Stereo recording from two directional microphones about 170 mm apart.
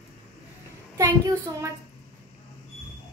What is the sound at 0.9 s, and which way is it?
Speech, 20° right (ahead or behind).